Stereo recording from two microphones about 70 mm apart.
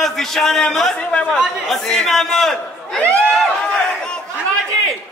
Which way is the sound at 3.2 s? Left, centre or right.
Centre.